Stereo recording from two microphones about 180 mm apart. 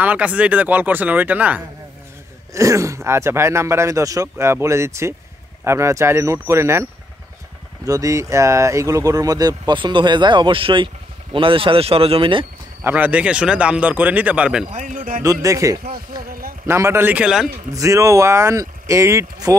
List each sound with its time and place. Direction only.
0.0 s speech: 10° right (ahead or behind); by 12.4 s 30° right (ahead or behind)
12.8 s speech: 10° right (ahead or behind)
14.7 s speech: 45° right (ahead or behind)
15.4 s speech: 20° right (ahead or behind)
16.3 s speech: 55° right (ahead or behind)
16.6 s speech: 15° right (ahead or behind)
17.7 s speech: 15° right (ahead or behind)